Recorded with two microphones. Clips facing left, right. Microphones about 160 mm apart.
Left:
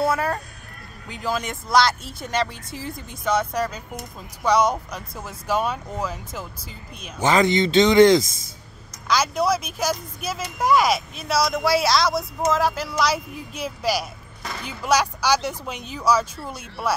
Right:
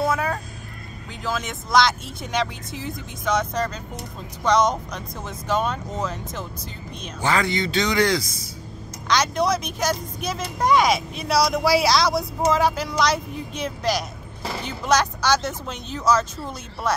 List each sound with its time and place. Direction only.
0.0 s vehicle: 5° left (ahead or behind)
1.1 s speech: 10° left (ahead or behind)
7.2 s speech: 20° left (ahead or behind)
9.0 s speech: 5° left (ahead or behind)